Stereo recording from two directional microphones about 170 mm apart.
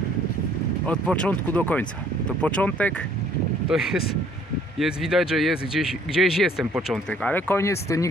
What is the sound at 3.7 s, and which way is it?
Speech, 5° right (ahead or behind).